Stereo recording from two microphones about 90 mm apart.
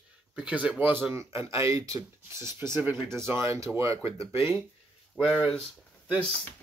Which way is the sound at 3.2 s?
30° right (ahead or behind).